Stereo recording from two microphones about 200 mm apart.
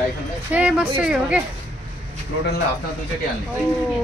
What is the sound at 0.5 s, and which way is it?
Speech, 10° right (ahead or behind).